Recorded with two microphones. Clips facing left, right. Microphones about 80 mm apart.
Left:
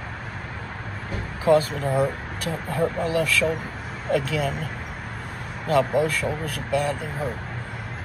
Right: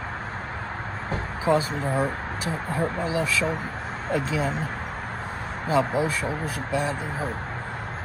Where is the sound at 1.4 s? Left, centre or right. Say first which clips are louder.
Left 4 dB; left.